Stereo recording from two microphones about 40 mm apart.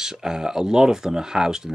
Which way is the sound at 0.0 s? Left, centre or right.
Centre.